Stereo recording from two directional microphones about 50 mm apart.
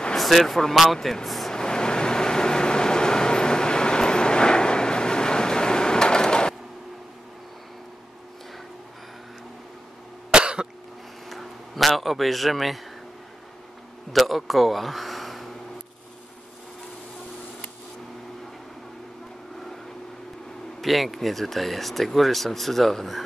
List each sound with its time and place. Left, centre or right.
0.1 s speech: centre
1.2 s vehicle: centre
1.5 s vehicle: centre
10.3 s cough: centre
11.2 s a sound: centre
14.1 s speech: centre
20.8 s speech: centre